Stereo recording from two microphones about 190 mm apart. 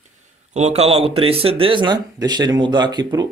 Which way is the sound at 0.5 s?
35° right (ahead or behind).